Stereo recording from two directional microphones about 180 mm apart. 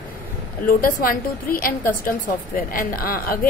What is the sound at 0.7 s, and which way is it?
A woman's voice, 50° left (ahead or behind).